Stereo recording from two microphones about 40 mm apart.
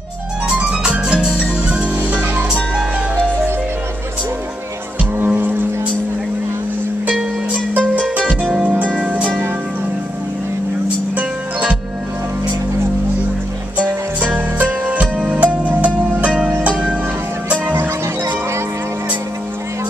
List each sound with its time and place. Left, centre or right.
0.9 s music: right
5.2 s music: right
13.7 s music: right